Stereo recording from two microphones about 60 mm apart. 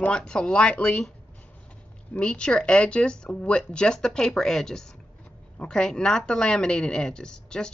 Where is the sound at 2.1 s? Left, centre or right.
Centre.